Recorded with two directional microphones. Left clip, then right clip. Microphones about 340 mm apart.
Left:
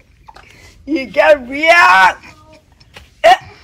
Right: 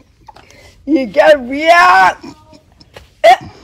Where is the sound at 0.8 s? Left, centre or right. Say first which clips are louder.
Right 2 dB; right.